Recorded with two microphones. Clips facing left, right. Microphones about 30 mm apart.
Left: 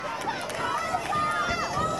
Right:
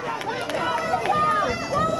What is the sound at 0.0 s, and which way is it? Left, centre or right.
Run, centre.